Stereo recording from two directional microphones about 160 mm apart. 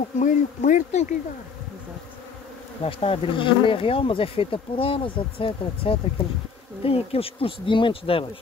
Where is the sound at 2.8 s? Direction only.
35° left (ahead or behind).